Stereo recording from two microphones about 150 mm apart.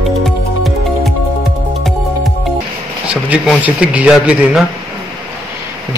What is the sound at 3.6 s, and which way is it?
Speech, 10° right (ahead or behind).